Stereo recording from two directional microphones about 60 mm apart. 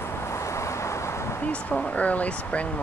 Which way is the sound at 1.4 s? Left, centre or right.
Left.